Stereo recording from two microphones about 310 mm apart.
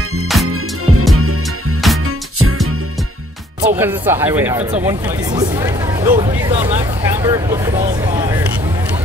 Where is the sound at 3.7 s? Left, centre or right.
Centre.